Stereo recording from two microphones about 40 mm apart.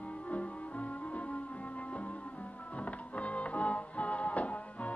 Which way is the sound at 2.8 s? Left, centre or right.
Left.